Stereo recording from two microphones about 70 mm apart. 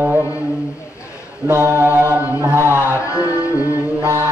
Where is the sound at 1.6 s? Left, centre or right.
Right.